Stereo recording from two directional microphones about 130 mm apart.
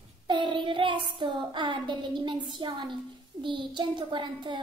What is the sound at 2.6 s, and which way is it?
A child's voice, 35° right (ahead or behind).